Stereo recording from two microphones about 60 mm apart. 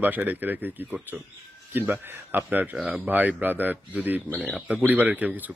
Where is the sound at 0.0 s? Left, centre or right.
Right.